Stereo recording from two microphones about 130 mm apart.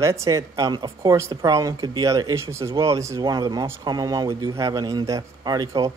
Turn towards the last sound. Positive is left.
turn(degrees=-30)  # may be behind; listen again after turning